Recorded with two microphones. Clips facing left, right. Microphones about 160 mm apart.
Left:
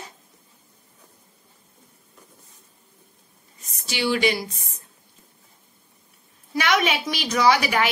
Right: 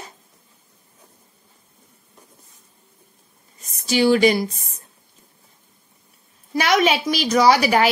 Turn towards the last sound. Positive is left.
turn(degrees=-40)  # may be behind; listen again after turning